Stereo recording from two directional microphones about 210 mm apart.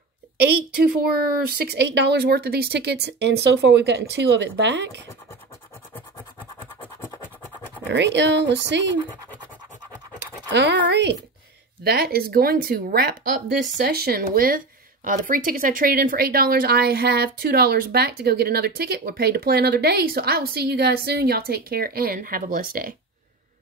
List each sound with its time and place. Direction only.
0.8 s speech: 45° right (ahead or behind)
7.9 s speech: 55° right (ahead or behind)
10.1 s speech: 55° right (ahead or behind)
13.9 s speech: 45° right (ahead or behind)